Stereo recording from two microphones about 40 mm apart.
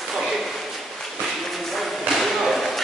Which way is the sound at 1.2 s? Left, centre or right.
Centre.